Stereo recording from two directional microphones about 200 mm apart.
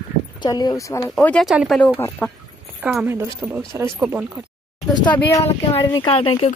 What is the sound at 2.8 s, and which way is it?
Speech, 5° right (ahead or behind).